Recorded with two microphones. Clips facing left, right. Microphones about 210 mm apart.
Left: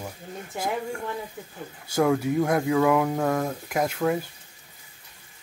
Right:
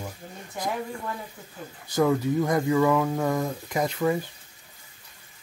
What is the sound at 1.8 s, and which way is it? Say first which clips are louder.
Speech: even; 10° left (ahead or behind).